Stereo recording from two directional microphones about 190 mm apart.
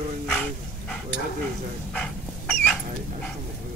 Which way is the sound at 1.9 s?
5° left (ahead or behind).